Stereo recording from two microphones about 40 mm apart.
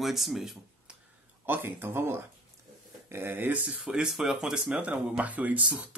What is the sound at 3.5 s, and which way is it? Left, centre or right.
Speech, right.